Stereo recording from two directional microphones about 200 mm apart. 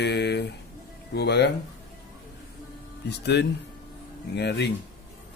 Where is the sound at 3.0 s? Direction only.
55° left (ahead or behind).